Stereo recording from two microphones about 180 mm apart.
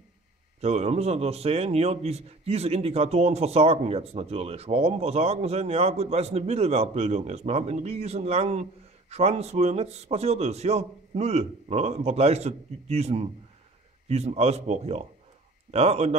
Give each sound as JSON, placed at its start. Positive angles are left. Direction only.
{"t": 0.6, "sound": "a man's voice", "side_deg": -35}